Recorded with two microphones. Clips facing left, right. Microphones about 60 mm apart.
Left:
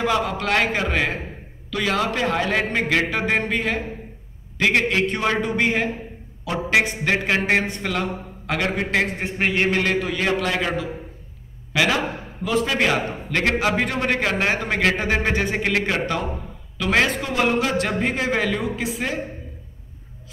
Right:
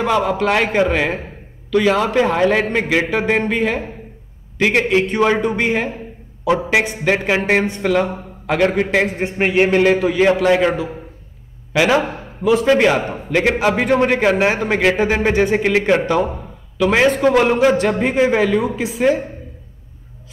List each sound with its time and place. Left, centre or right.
0.0 s a man's voice: centre
12.7 s a man's voice: centre
17.7 s a man's voice: centre